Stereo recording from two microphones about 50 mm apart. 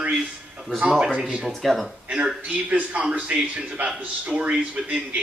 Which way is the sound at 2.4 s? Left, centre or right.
Right.